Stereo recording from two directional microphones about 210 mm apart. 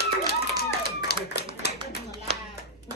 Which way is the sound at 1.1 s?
50° left (ahead or behind).